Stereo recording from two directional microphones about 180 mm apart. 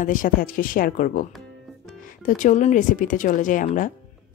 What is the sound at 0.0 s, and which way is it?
Speech, 50° left (ahead or behind).